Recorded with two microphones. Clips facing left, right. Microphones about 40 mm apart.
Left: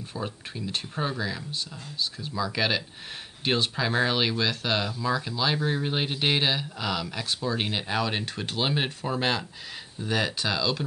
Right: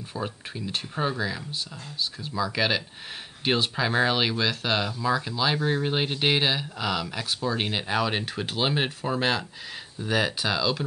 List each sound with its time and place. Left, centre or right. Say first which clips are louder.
0.1 s speech: right 2 dB; centre